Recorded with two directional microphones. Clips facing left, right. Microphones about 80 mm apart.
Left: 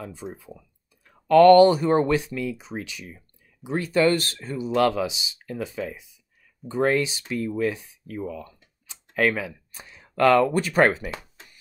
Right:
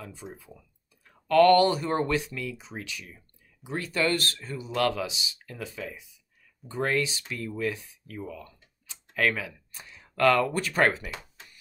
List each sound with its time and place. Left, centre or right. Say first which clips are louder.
0.0 s speech: left 6 dB; left